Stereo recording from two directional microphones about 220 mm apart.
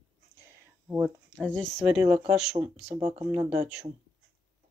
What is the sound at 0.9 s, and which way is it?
Speech, centre (ahead or behind).